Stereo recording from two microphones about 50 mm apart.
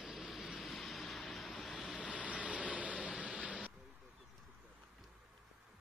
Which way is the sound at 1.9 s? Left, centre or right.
Right.